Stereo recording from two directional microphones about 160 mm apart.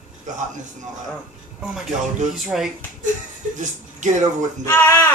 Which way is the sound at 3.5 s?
50° right (ahead or behind).